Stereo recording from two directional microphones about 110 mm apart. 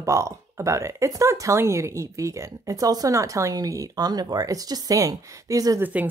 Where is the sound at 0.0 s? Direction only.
30° right (ahead or behind).